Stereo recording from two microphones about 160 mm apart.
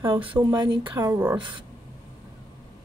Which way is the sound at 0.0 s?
30° right (ahead or behind).